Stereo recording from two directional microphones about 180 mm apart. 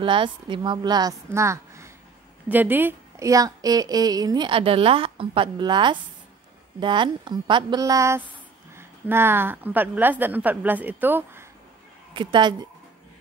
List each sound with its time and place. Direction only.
0.0 s a woman's voice: 25° right (ahead or behind); by 11.4 s 10° right (ahead or behind)
12.1 s a woman's voice: 25° right (ahead or behind)